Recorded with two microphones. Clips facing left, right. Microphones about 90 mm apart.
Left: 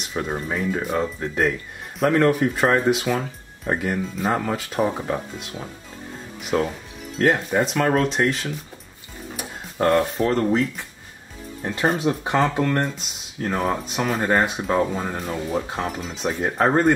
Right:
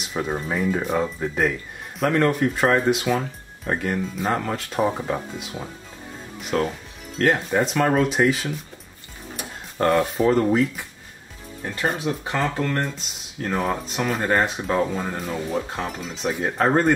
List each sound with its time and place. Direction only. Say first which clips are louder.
0.0 s speech: even; centre (ahead or behind)
11.6 s speech: left 3 dB; 20° left (ahead or behind)
13.4 s speech: left 1 dB; 5° left (ahead or behind)